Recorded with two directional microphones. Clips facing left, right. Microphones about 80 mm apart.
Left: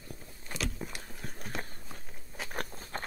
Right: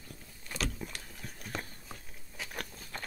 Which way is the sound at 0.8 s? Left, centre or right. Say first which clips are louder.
Left 2 dB; left.